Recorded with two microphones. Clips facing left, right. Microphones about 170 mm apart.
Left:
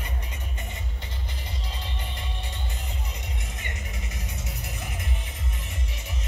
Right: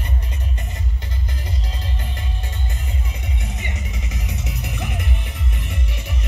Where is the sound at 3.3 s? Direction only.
80° right.